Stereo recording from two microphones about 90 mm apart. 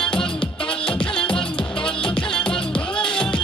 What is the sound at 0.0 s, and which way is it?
Music, 10° left (ahead or behind).